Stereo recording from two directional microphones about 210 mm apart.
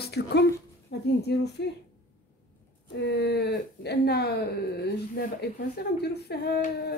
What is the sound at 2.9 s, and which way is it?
Speech, 50° left (ahead or behind).